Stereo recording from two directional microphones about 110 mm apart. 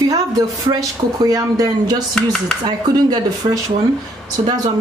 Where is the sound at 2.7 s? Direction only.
35° right (ahead or behind).